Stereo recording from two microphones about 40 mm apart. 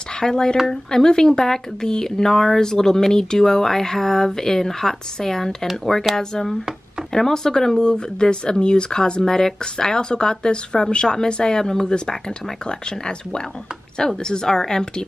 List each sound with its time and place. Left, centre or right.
0.2 s speech: centre